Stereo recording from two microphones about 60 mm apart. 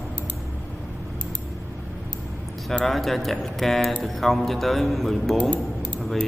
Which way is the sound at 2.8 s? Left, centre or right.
Centre.